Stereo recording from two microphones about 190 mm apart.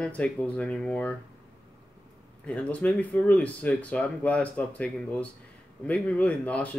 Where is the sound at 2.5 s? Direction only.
5° left (ahead or behind).